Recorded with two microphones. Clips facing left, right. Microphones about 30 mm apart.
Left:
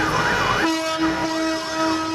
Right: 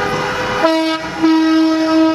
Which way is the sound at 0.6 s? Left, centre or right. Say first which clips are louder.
Right 6 dB; right.